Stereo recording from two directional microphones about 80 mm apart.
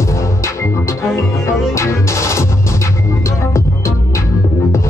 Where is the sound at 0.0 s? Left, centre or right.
Left.